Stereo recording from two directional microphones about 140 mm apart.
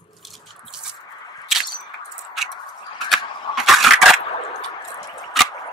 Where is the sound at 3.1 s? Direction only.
Centre (ahead or behind).